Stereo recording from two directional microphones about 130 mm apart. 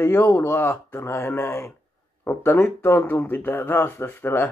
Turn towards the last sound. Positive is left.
turn(degrees=15)  # may be behind; listen again after turning